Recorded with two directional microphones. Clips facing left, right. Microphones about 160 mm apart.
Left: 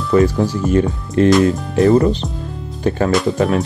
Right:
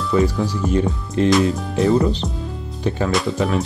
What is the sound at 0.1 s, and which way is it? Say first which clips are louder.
Speech: left 5 dB; 55° left (ahead or behind).